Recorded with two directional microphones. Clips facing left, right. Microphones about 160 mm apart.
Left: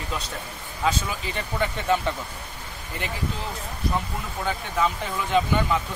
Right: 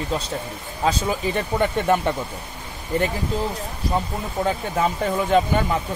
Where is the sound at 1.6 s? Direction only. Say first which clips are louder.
Right 3 dB; 55° right (ahead or behind).